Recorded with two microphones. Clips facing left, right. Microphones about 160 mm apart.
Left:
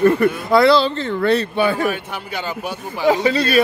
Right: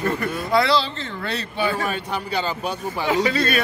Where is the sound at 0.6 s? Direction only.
55° left (ahead or behind).